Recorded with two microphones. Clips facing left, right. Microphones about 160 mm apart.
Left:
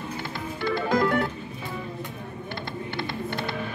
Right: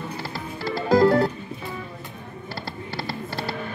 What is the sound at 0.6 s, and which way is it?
Music, 35° right (ahead or behind).